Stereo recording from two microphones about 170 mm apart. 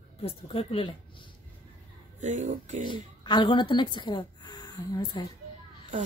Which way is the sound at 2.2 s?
45° right (ahead or behind).